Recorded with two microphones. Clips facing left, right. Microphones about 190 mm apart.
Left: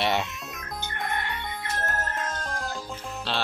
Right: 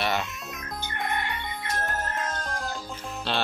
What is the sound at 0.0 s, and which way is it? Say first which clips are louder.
Music: left 2 dB; 20° left (ahead or behind).